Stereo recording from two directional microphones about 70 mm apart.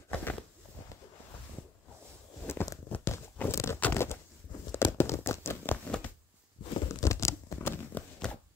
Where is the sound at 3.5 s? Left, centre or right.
Left.